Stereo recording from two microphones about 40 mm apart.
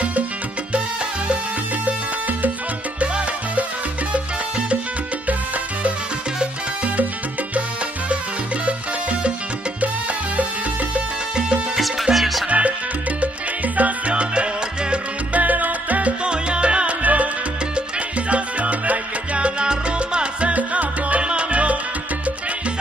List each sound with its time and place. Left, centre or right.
1.9 s music: right
4.1 s music: right
6.4 s salsa music: right
11.3 s music: right
11.8 s music: centre
12.4 s music: right
13.7 s salsa music: right
15.3 s salsa music: right
16.3 s music: right
17.0 s music: right
18.3 s salsa music: right
21.2 s salsa music: right